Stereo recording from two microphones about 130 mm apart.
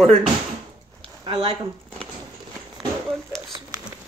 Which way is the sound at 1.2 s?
45° right (ahead or behind).